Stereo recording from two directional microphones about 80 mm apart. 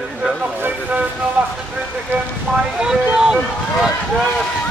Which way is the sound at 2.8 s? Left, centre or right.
Centre.